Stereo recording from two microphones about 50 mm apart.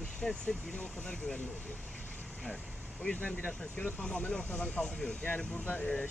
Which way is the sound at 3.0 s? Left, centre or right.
Left.